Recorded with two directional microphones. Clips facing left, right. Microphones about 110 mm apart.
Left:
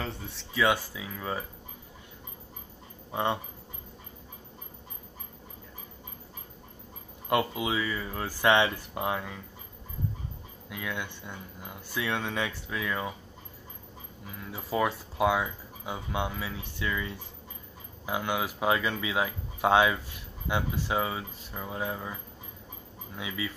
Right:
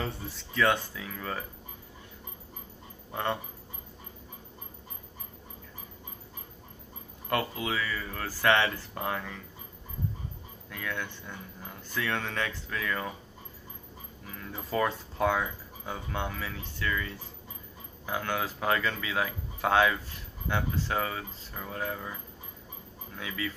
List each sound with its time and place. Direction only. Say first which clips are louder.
0.0 s speech: right 1 dB; centre (ahead or behind)
0.7 s speech: left 2 dB; 10° left (ahead or behind)
3.1 s speech: left 2 dB; 15° left (ahead or behind)
7.2 s speech: left 3 dB; 15° left (ahead or behind)
10.7 s speech: left 1 dB; 15° left (ahead or behind)
14.3 s speech: left 1 dB; 10° left (ahead or behind)
23.1 s speech: even; 15° left (ahead or behind)